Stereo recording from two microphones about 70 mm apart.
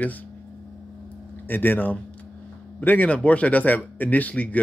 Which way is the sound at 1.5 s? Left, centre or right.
Left.